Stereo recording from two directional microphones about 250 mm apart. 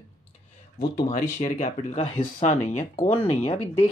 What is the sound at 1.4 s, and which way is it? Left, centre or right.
Speech, left.